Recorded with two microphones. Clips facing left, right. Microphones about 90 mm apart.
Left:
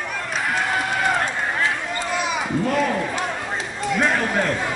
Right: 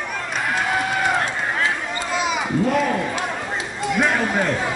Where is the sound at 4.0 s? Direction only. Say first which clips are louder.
Right 1 dB; 5° right (ahead or behind).